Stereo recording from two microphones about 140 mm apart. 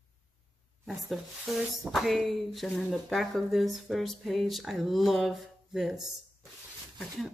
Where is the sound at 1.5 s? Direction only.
Centre (ahead or behind).